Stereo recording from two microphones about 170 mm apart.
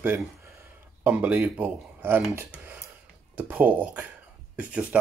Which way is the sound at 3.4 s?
10° right (ahead or behind).